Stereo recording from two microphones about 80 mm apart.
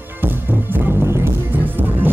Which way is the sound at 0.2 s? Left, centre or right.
Right.